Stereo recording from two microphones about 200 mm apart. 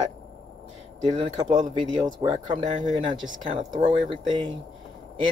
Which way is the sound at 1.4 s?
35° right (ahead or behind).